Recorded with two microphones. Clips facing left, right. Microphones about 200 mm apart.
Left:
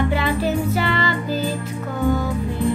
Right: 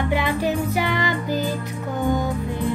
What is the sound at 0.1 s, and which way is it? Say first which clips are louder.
Music: left 1 dB; 15° right (ahead or behind).